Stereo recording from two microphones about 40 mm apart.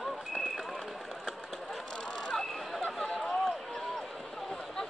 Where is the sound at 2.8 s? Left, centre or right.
Centre.